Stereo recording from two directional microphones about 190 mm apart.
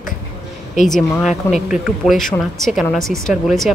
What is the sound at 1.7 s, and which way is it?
A woman's voice, 5° right (ahead or behind).